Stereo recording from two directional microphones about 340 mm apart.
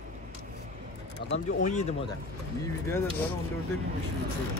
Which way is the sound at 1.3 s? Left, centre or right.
Centre.